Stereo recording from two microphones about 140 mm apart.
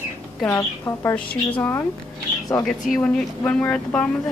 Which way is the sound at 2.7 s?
Centre (ahead or behind).